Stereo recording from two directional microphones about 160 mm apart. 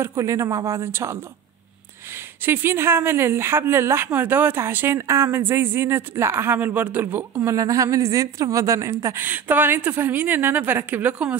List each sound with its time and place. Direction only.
0.0 s speech: 20° right (ahead or behind)